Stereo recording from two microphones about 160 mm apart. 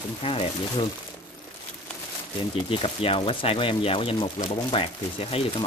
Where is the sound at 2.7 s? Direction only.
35° left (ahead or behind).